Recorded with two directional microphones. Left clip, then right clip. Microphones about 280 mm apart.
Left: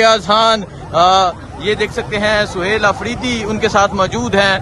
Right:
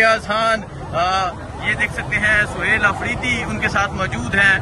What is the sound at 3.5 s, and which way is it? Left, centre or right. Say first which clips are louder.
Speech: left 6 dB; centre.